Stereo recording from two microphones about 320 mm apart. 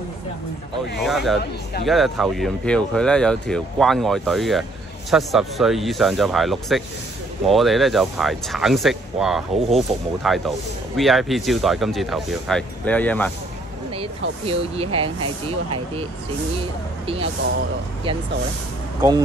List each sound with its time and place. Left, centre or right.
0.9 s speech: centre
14.4 s speech: centre
17.0 s speech: centre
18.9 s speech: centre